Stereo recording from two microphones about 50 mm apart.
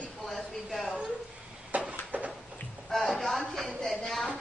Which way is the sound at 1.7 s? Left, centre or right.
Right.